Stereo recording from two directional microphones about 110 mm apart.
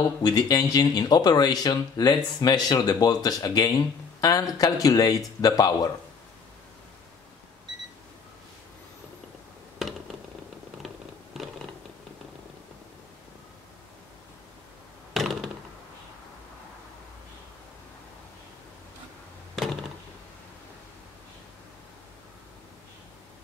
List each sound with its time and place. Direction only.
0.2 s speech: 35° left (ahead or behind)
9.8 s a sound: centre (ahead or behind)
15.1 s thunk: centre (ahead or behind)